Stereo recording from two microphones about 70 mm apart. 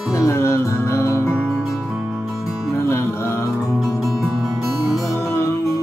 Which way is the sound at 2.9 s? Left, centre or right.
Left.